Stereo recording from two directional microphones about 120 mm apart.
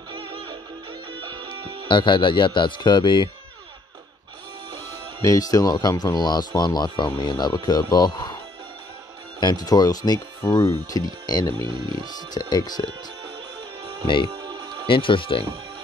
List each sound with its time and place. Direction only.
0.1 s music: 40° right (ahead or behind)
1.9 s speech: 40° left (ahead or behind)
5.2 s speech: 30° left (ahead or behind)
9.4 s speech: 35° left (ahead or behind)
10.4 s speech: 25° left (ahead or behind)
11.5 s speech: 40° right (ahead or behind)
12.4 s speech: 35° left (ahead or behind)
14.0 s speech: 45° left (ahead or behind)
14.3 s music: 35° right (ahead or behind)
14.9 s speech: 45° left (ahead or behind)